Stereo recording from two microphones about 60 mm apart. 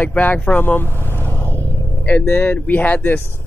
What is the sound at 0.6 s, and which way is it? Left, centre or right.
Vehicle, left.